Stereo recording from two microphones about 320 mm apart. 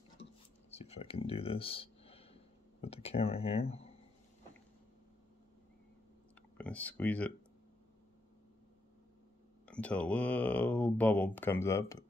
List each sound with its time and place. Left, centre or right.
0.2 s a sound: centre
6.6 s speech: centre
9.7 s speech: centre